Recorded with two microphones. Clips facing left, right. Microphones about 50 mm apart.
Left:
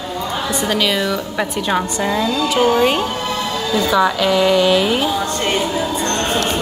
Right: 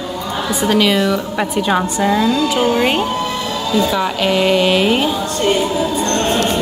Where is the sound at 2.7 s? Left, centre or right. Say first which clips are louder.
Even; centre.